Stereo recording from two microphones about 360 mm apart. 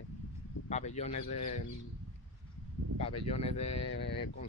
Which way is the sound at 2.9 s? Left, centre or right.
Centre.